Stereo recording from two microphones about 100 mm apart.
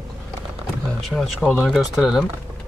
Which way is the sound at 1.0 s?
Centre (ahead or behind).